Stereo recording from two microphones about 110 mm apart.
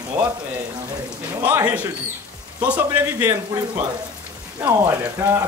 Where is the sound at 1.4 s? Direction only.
15° right (ahead or behind).